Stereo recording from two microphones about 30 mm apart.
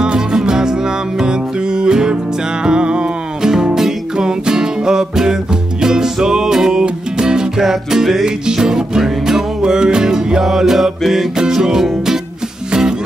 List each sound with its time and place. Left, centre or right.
0.0 s music: right
3.4 s music: centre
7.6 s music: centre
8.5 s music: right
9.6 s music: right
10.4 s music: centre